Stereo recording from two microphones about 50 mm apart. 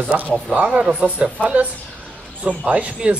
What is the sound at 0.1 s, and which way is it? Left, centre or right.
Speech, right.